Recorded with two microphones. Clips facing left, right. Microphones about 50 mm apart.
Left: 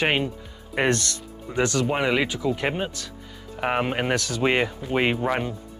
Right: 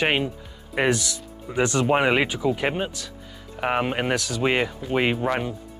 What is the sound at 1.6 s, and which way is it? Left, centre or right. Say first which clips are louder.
Speech: right 3 dB; right.